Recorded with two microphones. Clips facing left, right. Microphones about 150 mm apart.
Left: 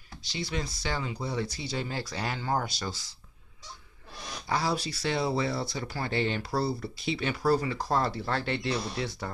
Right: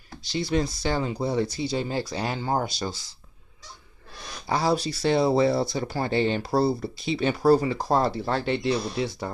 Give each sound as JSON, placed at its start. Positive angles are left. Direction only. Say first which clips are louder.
{"t": 0.3, "sound": "speech", "louder": "right 9 dB", "side_deg": -40}
{"t": 4.5, "sound": "speech", "louder": "right 6 dB", "side_deg": -25}